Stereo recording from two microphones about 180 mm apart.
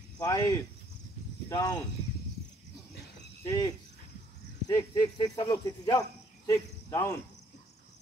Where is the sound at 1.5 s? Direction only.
20° left (ahead or behind).